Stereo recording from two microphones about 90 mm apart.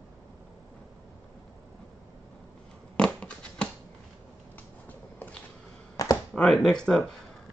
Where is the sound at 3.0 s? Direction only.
10° left (ahead or behind).